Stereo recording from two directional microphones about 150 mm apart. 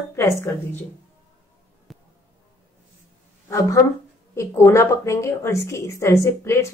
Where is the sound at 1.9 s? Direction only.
Centre (ahead or behind).